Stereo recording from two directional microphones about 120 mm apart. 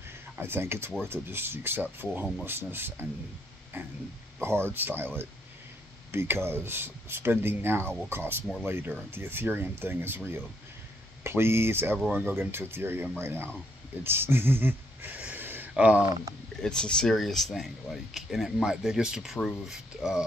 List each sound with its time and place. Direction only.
0.4 s speech: 20° right (ahead or behind)
14.0 s a sound: 20° right (ahead or behind)
15.7 s speech: 10° right (ahead or behind)
16.6 s speech: 5° left (ahead or behind)